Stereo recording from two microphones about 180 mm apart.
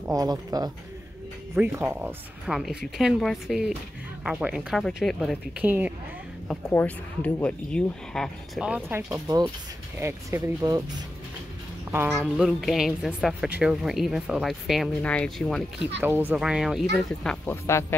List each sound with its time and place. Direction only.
0.0 s speech: 20° right (ahead or behind)
6.7 s speech: 10° left (ahead or behind); by 11.1 s 20° right (ahead or behind)
12.2 s speech: centre (ahead or behind)
16.0 s speech: 10° right (ahead or behind)
17.6 s speech: 15° left (ahead or behind)